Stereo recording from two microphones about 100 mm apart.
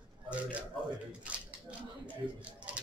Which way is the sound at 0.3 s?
10° right (ahead or behind).